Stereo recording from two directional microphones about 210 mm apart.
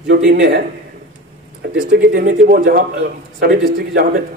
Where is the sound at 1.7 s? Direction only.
45° right (ahead or behind).